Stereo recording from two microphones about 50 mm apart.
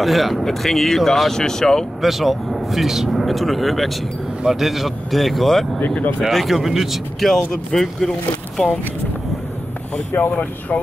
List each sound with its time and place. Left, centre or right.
0.0 s speech: centre
2.0 s speech: centre
5.8 s speech: left
6.2 s speech: centre
8.6 s speech: centre
10.3 s speech: left